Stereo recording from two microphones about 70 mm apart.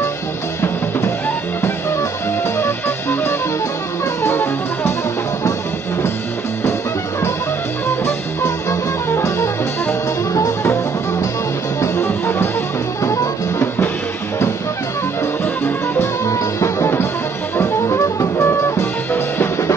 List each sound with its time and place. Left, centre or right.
2.6 s music: left
8.0 s music: left
11.8 s music: left
13.0 s music: left
16.3 s music: left